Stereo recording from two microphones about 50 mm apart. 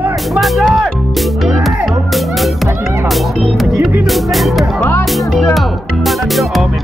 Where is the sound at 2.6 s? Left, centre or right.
Right.